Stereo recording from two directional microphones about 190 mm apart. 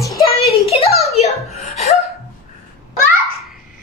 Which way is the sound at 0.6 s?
30° left (ahead or behind).